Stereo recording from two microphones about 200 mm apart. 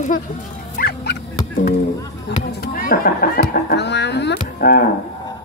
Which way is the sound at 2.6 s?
45° left (ahead or behind).